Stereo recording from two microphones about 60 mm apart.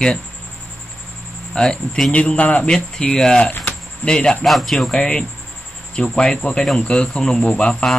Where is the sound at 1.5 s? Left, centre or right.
Centre.